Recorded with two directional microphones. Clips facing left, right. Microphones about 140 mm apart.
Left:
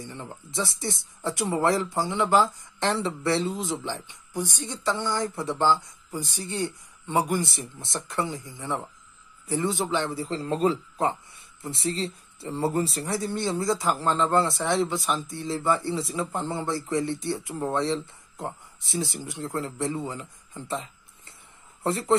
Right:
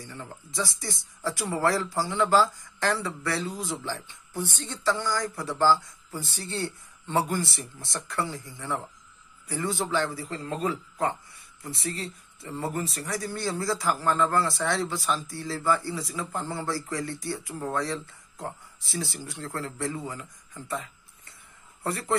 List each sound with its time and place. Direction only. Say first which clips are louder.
0.0 s a man's voice: left 2 dB; 20° left (ahead or behind)